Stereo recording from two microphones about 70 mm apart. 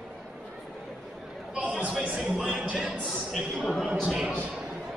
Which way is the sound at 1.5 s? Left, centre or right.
Centre.